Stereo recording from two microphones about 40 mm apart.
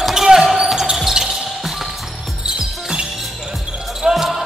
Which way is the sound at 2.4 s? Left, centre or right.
Right.